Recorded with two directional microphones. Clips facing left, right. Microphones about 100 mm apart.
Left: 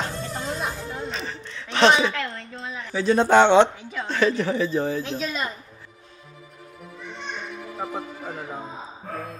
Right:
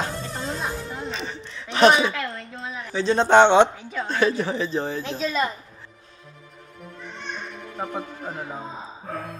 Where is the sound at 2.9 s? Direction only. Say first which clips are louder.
Even; 25° right (ahead or behind).